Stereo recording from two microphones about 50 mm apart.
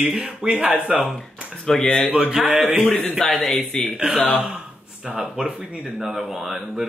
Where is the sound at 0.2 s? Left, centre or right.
Centre.